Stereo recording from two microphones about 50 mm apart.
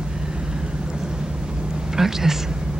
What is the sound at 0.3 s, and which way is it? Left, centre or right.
Vehicle, centre.